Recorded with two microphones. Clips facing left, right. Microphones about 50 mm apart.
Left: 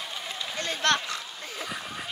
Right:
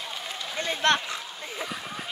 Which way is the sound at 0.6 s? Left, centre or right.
Centre.